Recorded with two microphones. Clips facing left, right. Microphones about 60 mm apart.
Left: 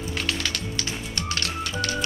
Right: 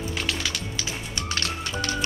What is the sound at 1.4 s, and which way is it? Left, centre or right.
Music, right.